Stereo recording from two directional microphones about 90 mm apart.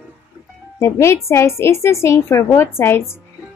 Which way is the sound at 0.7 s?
30° left (ahead or behind).